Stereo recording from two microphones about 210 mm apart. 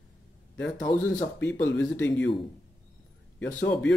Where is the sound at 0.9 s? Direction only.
25° left (ahead or behind).